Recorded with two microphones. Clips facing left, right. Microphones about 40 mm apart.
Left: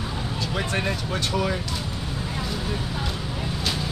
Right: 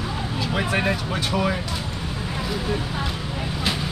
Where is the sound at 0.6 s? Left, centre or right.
Centre.